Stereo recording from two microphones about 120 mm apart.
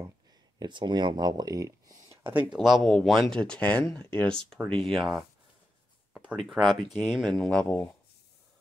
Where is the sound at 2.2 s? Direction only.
15° right (ahead or behind).